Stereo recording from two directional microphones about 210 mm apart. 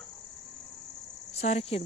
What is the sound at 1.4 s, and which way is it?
Speech, 30° left (ahead or behind).